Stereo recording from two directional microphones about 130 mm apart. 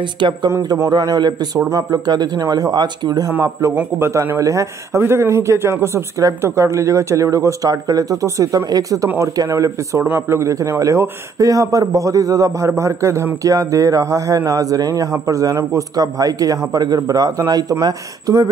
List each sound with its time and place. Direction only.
0.5 s a man's voice: 25° right (ahead or behind)